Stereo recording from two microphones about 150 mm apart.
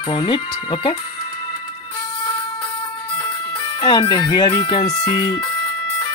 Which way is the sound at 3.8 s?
30° left (ahead or behind).